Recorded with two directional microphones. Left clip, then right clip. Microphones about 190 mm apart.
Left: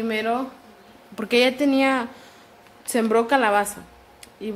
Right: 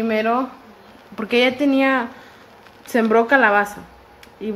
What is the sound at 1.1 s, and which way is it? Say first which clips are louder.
A woman's voice: right 2 dB; 25° left (ahead or behind).